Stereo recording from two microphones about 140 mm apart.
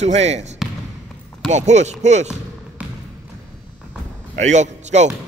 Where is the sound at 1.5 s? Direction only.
55° right (ahead or behind).